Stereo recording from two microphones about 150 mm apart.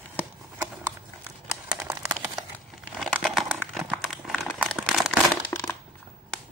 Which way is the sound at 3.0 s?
Centre (ahead or behind).